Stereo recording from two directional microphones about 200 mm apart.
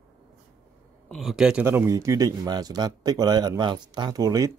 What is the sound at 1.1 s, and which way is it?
Speech, centre (ahead or behind).